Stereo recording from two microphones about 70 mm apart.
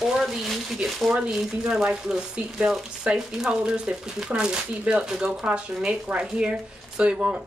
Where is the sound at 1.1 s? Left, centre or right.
Centre.